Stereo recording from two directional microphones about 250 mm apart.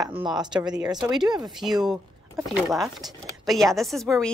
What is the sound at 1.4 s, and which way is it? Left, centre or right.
Speech, centre.